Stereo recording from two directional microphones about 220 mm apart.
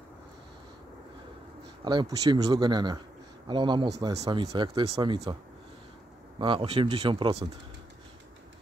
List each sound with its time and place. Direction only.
1.9 s speech: 20° right (ahead or behind)